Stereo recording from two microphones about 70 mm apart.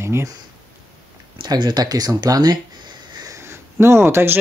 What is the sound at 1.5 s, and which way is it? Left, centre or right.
Speech, right.